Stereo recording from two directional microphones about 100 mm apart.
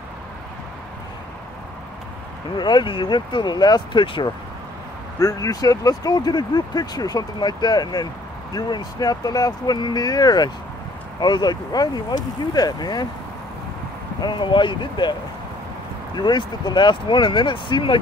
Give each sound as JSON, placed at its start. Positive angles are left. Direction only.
{"t": 2.5, "sound": "speech", "side_deg": 50}
{"t": 4.0, "sound": "speech", "side_deg": 60}
{"t": 5.2, "sound": "speech", "side_deg": 35}
{"t": 14.2, "sound": "speech", "side_deg": 50}
{"t": 16.2, "sound": "speech", "side_deg": 50}